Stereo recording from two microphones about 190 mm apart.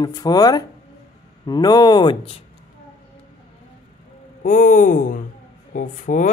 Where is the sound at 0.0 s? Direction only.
20° left (ahead or behind).